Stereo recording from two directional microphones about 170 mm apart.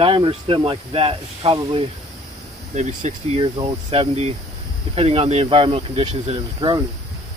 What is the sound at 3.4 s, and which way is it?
Speech, 30° right (ahead or behind).